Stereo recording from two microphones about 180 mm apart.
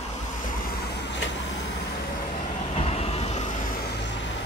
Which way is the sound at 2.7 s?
35° left (ahead or behind).